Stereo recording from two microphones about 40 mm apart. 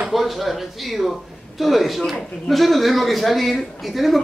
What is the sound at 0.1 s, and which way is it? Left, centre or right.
A man's voice, centre.